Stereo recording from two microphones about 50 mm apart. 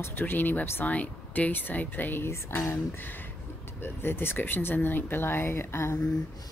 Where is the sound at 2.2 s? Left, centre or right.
Left.